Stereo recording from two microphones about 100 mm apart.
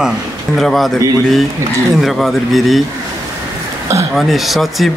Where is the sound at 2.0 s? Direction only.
Centre (ahead or behind).